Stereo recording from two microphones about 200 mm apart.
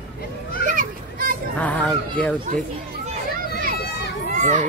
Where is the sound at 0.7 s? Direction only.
45° right (ahead or behind).